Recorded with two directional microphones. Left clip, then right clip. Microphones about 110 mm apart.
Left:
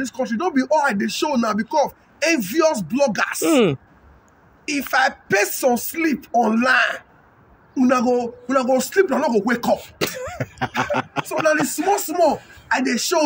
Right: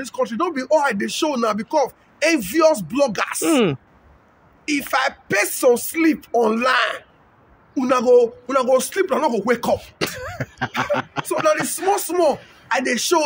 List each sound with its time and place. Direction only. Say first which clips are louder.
0.1 s speech: right 3 dB; 35° right (ahead or behind)
3.4 s throat clearing: left 1 dB; 15° right (ahead or behind)
4.9 s speech: left 2 dB; 35° right (ahead or behind)
9.8 s throat clearing: left 1 dB; 15° right (ahead or behind)
10.8 s speech: even; 5° right (ahead or behind)
11.4 s speech: even; 30° right (ahead or behind)